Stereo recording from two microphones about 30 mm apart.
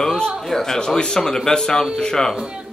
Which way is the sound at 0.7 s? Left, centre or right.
Left.